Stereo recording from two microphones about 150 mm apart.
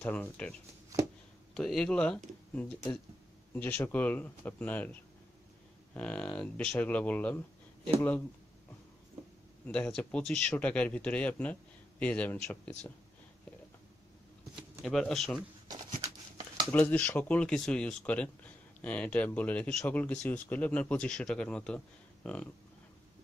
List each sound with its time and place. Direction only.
0.0 s speech: 10° left (ahead or behind)
5.9 s speech: 5° left (ahead or behind)
9.7 s speech: 10° left (ahead or behind)
14.5 s speech: centre (ahead or behind)
16.0 s a sound: 25° right (ahead or behind)
16.7 s speech: 10° left (ahead or behind)